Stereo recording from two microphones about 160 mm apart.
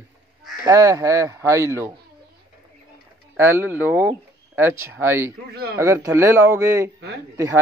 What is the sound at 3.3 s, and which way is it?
A man's voice, 15° right (ahead or behind).